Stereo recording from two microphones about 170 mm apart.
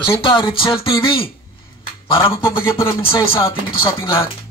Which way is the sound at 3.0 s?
30° left (ahead or behind).